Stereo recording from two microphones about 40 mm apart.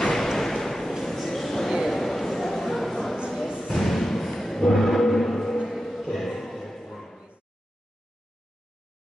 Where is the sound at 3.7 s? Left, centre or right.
Centre.